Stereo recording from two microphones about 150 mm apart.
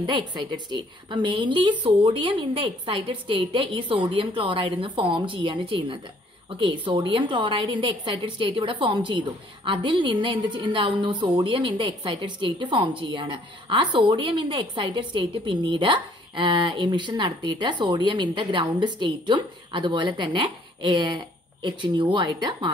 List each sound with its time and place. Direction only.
0.0 s a woman's voice: 30° right (ahead or behind)